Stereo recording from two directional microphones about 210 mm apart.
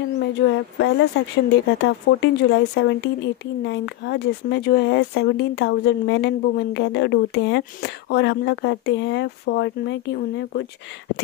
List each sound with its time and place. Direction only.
0.3 s speech: 55° left (ahead or behind)